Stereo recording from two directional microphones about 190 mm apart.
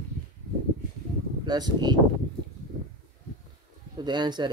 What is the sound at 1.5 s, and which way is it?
Speech, 20° right (ahead or behind).